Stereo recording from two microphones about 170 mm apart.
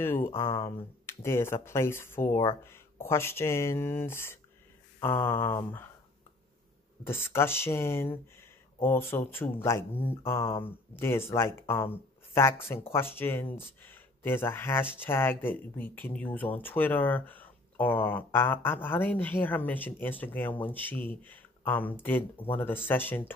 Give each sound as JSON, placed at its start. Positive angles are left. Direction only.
{"t": 0.0, "sound": "speech", "side_deg": 15}
{"t": 0.3, "sound": "speech", "side_deg": 30}
{"t": 1.0, "sound": "speech", "side_deg": 15}
{"t": 7.1, "sound": "speech", "side_deg": 15}